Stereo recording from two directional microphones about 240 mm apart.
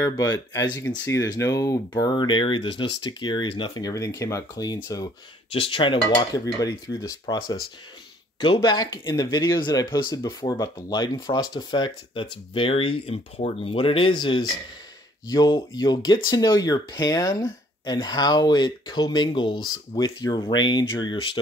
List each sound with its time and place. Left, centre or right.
0.0 s speech: centre